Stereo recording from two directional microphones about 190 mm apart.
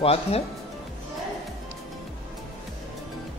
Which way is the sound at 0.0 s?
30° left (ahead or behind).